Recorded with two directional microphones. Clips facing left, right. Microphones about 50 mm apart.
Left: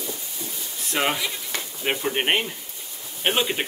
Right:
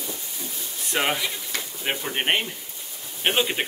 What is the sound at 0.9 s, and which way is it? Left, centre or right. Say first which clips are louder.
Speech: even; centre.